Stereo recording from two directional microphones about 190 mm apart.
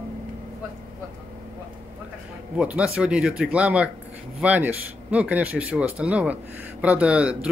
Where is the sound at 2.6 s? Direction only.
5° right (ahead or behind).